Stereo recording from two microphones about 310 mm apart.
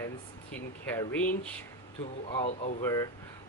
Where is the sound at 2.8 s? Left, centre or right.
Centre.